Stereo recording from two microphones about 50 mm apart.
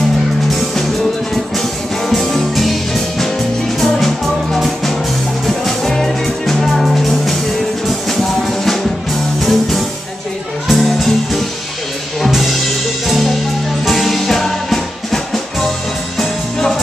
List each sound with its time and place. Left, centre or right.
2.0 s music: centre
12.3 s music: centre
13.8 s music: centre